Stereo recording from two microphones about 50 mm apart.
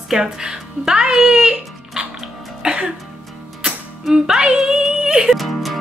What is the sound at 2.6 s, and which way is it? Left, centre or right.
Music, centre.